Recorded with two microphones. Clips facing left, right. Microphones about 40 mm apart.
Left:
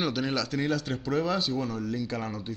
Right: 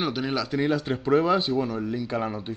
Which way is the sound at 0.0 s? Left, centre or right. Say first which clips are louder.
Right 2 dB; centre.